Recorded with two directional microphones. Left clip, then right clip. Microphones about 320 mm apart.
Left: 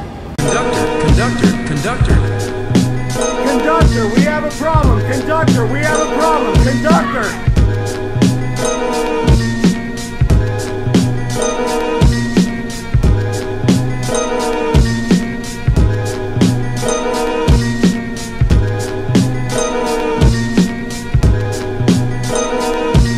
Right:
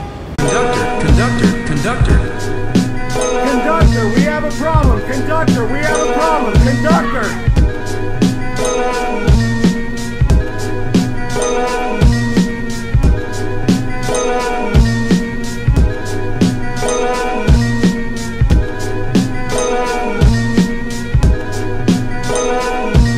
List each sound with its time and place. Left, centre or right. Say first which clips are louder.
0.4 s music: right 1 dB; centre
2.7 s speech: right 1 dB; centre
8.2 s music: even; centre
10.9 s music: even; centre
13.7 s music: even; centre
16.3 s music: right 1 dB; centre
19.1 s music: even; centre
21.8 s music: right 1 dB; centre